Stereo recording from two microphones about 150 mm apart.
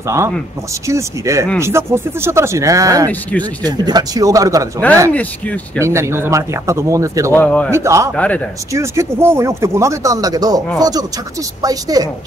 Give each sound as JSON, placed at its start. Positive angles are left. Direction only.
{"t": 0.8, "sound": "speech", "side_deg": -20}
{"t": 3.1, "sound": "speech", "side_deg": 10}
{"t": 3.6, "sound": "speech", "side_deg": -30}
{"t": 4.9, "sound": "speech", "side_deg": 10}
{"t": 5.8, "sound": "speech", "side_deg": -20}
{"t": 7.3, "sound": "speech", "side_deg": 10}
{"t": 7.7, "sound": "speech", "side_deg": -20}